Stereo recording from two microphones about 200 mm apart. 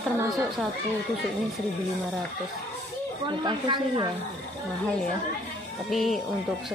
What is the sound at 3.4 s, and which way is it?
Speech, 25° right (ahead or behind).